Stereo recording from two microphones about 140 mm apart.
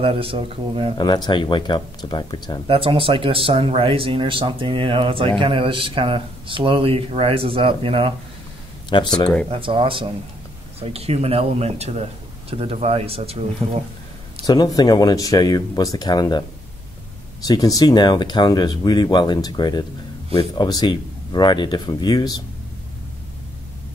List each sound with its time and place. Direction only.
0.0 s speech: 40° right (ahead or behind)
0.9 s speech: 30° left (ahead or behind)
2.7 s speech: 40° right (ahead or behind)
8.9 s speech: 35° left (ahead or behind)
9.5 s speech: 35° right (ahead or behind)
14.4 s speech: 30° left (ahead or behind)
17.5 s speech: 25° left (ahead or behind)